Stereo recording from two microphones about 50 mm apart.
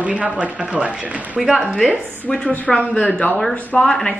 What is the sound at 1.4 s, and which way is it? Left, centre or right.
Speech, centre.